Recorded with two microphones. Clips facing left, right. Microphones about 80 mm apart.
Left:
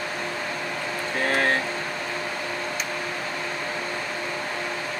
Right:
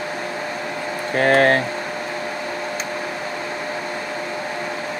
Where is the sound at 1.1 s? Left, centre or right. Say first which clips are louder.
Right 9 dB; right.